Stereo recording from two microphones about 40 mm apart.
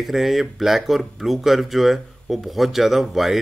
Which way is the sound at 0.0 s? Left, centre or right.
Centre.